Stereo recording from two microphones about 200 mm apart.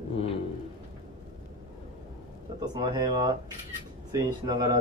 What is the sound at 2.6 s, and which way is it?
Speech, 20° right (ahead or behind).